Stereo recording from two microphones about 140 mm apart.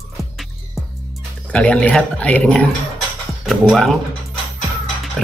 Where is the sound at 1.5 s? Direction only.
10° left (ahead or behind).